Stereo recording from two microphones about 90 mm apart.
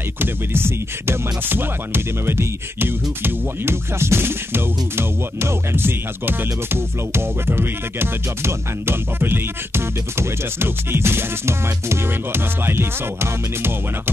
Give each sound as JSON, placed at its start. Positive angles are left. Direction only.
{"t": 0.2, "sound": "music", "side_deg": -25}